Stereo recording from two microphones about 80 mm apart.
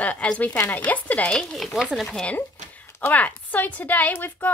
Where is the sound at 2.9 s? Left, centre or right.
Centre.